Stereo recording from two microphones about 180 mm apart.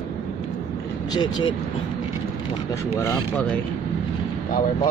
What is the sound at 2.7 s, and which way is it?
Speech, 15° left (ahead or behind).